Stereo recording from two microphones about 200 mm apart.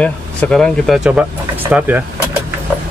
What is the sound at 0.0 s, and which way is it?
Speech, 5° left (ahead or behind).